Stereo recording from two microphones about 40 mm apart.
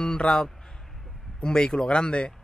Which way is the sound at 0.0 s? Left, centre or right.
Centre.